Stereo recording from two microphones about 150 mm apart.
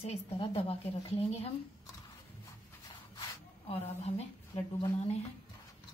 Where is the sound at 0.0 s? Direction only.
40° left (ahead or behind).